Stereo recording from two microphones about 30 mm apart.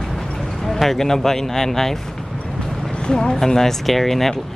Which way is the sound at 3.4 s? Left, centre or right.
Centre.